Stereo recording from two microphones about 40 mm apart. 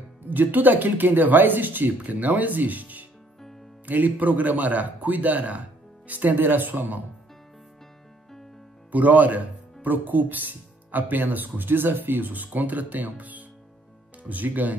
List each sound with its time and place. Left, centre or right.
0.2 s speech: right
8.9 s speech: right